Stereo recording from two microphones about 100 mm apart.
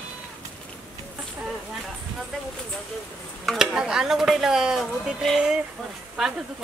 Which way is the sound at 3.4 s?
5° right (ahead or behind).